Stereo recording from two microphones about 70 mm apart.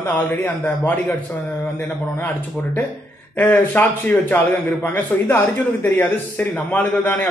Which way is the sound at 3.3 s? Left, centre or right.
Left.